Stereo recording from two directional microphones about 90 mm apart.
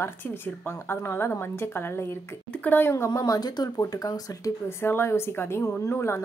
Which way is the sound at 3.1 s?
45° left (ahead or behind).